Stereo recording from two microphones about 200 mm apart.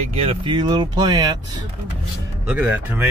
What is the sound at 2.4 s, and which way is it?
Speech, 5° right (ahead or behind).